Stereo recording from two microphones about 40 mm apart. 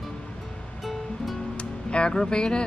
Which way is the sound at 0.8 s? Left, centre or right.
Centre.